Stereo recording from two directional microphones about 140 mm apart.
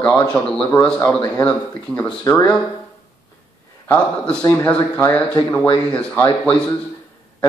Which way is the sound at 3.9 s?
15° left (ahead or behind).